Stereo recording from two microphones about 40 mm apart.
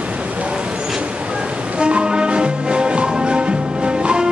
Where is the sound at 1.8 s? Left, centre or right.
Right.